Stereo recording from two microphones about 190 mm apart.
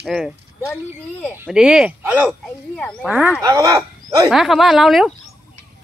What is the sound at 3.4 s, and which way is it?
Speech, 15° right (ahead or behind).